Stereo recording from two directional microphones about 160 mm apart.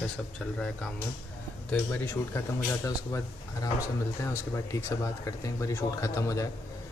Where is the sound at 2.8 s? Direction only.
20° left (ahead or behind).